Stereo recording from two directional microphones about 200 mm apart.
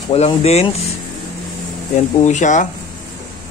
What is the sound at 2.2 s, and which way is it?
Speech, 35° left (ahead or behind).